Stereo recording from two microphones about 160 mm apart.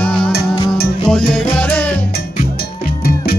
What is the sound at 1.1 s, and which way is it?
Salsa music, 5° left (ahead or behind).